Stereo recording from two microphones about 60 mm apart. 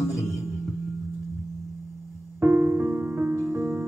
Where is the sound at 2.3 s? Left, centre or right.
Right.